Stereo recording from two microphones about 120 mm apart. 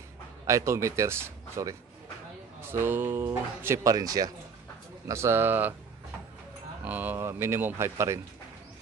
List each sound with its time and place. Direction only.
0.5 s speech: 25° right (ahead or behind)
6.8 s speech: 15° right (ahead or behind)